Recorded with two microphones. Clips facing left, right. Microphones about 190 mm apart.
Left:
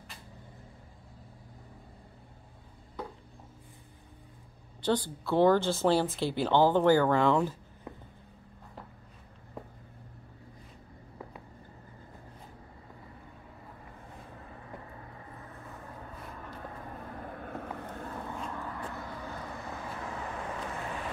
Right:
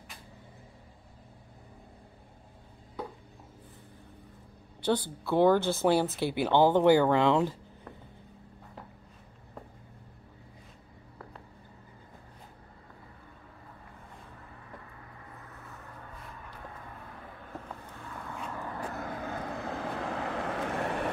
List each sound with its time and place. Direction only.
4.9 s speech: 5° right (ahead or behind)
17.4 s vehicle: 55° left (ahead or behind)
18.4 s vehicle: 10° right (ahead or behind)
18.9 s vehicle: 60° right (ahead or behind)